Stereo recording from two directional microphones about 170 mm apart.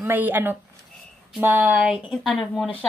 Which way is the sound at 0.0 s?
10° right (ahead or behind).